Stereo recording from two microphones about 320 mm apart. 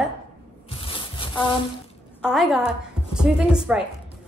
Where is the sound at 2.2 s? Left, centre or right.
Centre.